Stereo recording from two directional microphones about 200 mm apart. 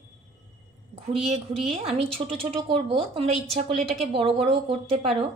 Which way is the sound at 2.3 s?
30° right (ahead or behind).